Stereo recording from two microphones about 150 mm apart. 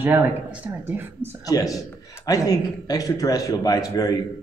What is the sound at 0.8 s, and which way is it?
Speech, 15° right (ahead or behind).